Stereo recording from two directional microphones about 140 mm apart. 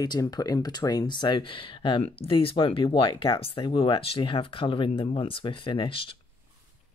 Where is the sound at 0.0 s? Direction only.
30° left (ahead or behind).